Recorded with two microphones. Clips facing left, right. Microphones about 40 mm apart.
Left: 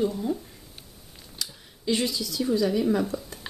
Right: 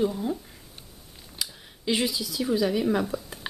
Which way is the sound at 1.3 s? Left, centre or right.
Centre.